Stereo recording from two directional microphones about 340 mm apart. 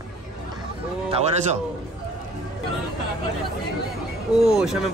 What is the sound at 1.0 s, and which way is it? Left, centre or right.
Speech, centre.